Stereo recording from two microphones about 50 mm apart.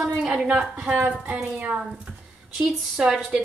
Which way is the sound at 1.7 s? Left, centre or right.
Centre.